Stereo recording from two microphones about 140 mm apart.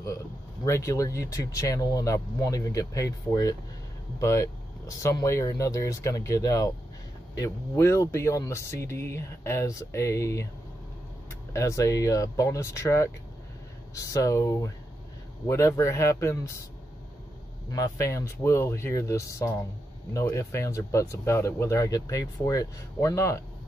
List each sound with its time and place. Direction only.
0.7 s speech: 20° left (ahead or behind)
11.5 s speech: 20° left (ahead or behind)
17.6 s speech: 25° left (ahead or behind)